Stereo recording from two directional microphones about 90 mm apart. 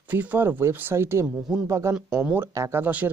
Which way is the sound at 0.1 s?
20° right (ahead or behind).